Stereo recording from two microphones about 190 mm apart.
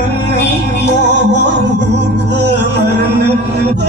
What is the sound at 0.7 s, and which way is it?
Music, 60° right (ahead or behind).